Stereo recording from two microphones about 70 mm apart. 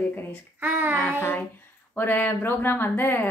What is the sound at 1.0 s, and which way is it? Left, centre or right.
A woman's voice, left.